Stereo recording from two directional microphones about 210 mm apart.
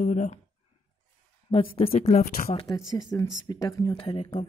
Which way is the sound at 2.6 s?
15° left (ahead or behind).